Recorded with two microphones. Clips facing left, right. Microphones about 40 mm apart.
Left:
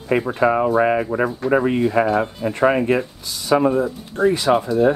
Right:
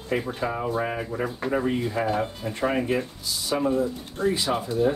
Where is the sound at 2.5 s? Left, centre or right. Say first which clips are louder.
Left 8 dB; left.